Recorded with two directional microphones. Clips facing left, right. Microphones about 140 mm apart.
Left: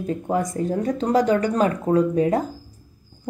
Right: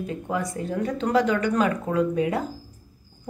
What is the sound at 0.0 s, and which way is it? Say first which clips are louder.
A woman's voice: left 5 dB; 40° left (ahead or behind).